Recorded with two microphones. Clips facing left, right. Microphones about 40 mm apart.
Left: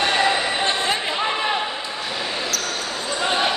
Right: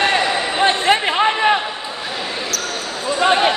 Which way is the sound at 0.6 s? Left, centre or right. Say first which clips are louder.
Right 6 dB; right.